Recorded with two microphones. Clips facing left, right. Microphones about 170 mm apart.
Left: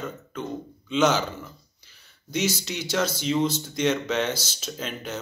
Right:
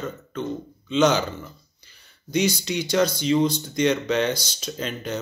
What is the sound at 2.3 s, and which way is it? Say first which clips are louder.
Speech: right 4 dB; 5° left (ahead or behind).